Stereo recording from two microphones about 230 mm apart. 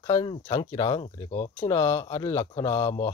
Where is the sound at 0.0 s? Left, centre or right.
Centre.